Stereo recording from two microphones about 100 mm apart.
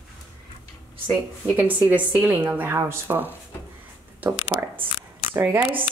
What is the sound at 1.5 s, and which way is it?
A woman's voice, 15° right (ahead or behind).